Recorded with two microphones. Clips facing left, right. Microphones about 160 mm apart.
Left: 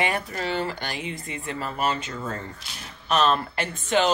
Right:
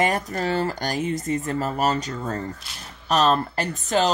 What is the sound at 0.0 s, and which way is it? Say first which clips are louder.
Speech: right 4 dB; 40° right (ahead or behind).